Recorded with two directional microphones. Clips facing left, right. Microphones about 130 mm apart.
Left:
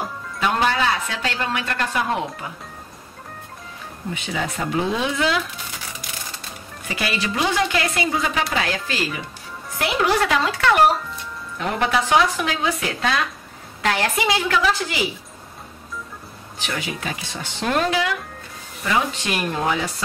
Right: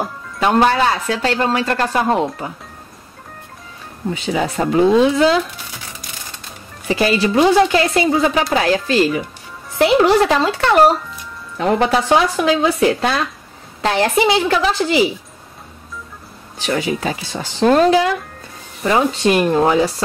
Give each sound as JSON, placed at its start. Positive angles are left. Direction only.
{"t": 0.4, "sound": "speech", "side_deg": -45}
{"t": 4.1, "sound": "speech", "side_deg": -35}
{"t": 6.9, "sound": "a woman's voice", "side_deg": -35}
{"t": 16.5, "sound": "speech", "side_deg": -35}